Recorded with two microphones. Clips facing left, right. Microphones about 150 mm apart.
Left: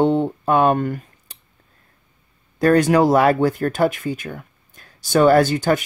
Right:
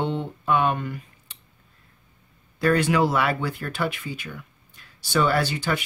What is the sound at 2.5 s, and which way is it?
Speech, 45° left (ahead or behind).